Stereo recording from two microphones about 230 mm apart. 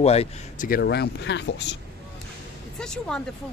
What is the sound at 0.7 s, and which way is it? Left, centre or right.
Speech, left.